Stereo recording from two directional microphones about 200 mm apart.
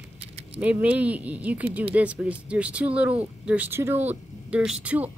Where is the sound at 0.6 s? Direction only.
5° right (ahead or behind).